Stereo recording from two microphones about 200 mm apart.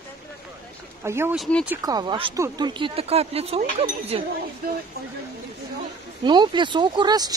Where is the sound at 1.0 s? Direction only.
10° right (ahead or behind).